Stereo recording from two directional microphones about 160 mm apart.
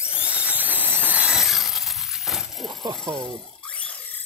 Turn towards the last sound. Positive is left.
turn(degrees=10)  # may be behind; listen again after turning